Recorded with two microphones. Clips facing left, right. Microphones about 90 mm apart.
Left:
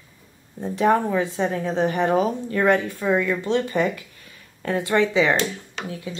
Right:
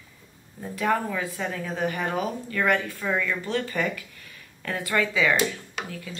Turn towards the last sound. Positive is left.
turn(degrees=20)  # may be behind; listen again after turning